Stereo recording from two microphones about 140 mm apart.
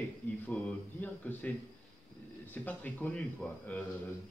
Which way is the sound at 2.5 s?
10° left (ahead or behind).